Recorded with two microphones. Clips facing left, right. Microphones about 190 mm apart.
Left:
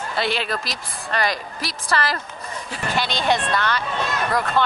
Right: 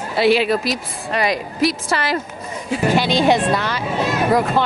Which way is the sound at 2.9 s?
Centre (ahead or behind).